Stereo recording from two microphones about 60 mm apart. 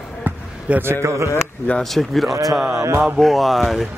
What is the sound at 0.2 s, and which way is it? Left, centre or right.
Basketball bounce, right.